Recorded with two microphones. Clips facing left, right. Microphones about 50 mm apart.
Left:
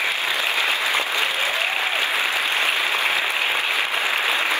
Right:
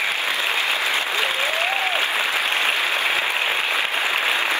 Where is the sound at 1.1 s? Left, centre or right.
Right.